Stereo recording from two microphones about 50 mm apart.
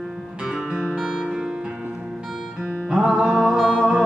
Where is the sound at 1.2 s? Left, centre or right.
Centre.